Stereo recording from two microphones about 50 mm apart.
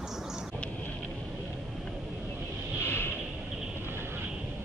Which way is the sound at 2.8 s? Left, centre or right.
Left.